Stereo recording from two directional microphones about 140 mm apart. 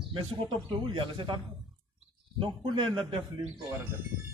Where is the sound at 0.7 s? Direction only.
35° right (ahead or behind).